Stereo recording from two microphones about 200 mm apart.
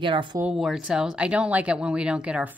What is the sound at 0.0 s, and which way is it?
Speech, 25° right (ahead or behind).